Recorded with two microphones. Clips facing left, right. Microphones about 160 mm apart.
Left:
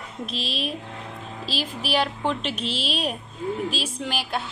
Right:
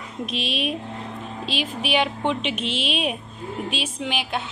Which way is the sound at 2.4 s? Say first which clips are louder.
Right 2 dB; 35° left (ahead or behind).